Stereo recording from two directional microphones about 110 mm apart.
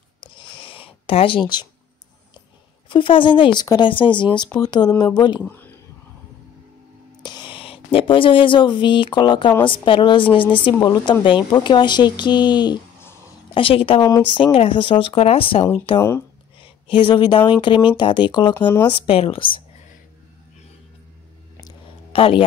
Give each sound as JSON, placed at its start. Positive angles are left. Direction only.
{"t": 0.2, "sound": "a sound", "side_deg": 50}
{"t": 2.9, "sound": "a woman's voice", "side_deg": 50}
{"t": 3.6, "sound": "speech", "side_deg": 35}
{"t": 3.9, "sound": "a woman's voice", "side_deg": 45}
{"t": 5.4, "sound": "a sound", "side_deg": 15}
{"t": 7.2, "sound": "a woman's voice", "side_deg": 45}
{"t": 13.6, "sound": "a woman's voice", "side_deg": 55}
{"t": 16.6, "sound": "a woman's voice", "side_deg": 50}
{"t": 18.9, "sound": "a woman's voice", "side_deg": 60}
{"t": 22.1, "sound": "speech", "side_deg": 55}